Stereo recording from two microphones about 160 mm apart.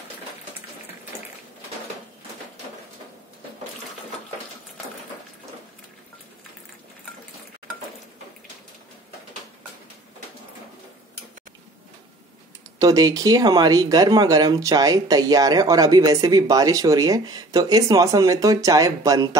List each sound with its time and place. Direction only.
12.7 s speech: 25° right (ahead or behind)